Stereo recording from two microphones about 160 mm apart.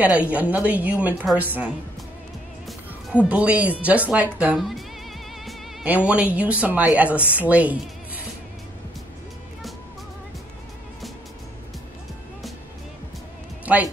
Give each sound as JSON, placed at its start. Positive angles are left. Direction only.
{"t": 0.0, "sound": "a woman's voice", "side_deg": -10}
{"t": 3.3, "sound": "a woman's voice", "side_deg": -10}
{"t": 5.4, "sound": "music", "side_deg": 0}
{"t": 6.0, "sound": "a woman's voice", "side_deg": -10}